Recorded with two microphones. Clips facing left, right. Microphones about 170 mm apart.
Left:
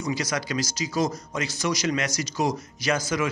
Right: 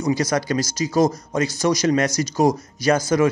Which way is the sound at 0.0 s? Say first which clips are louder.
Right 7 dB; 40° right (ahead or behind).